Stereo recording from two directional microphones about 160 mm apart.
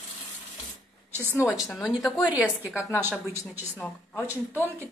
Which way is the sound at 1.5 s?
15° left (ahead or behind).